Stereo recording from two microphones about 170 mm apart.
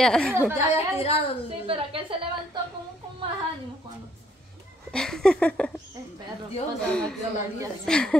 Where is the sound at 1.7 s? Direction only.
30° right (ahead or behind).